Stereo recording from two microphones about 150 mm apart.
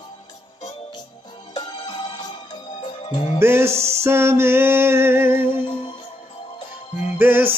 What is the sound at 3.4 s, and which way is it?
Music, 15° right (ahead or behind).